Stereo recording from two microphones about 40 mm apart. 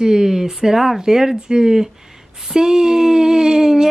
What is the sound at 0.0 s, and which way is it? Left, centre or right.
Speech, centre.